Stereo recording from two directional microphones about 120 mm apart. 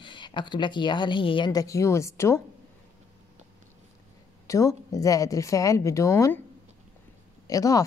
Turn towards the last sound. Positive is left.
turn(degrees=30)  # may be behind; listen again after turning